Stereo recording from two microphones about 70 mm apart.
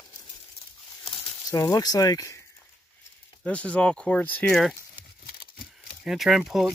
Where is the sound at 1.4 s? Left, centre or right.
Left.